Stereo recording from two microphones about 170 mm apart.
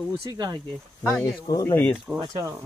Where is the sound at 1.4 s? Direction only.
20° left (ahead or behind).